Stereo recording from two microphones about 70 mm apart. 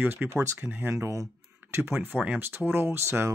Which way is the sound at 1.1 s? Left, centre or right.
Right.